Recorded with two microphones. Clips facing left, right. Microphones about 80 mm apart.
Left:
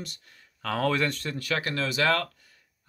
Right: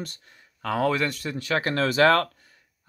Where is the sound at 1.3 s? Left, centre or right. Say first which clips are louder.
Right 4 dB; right.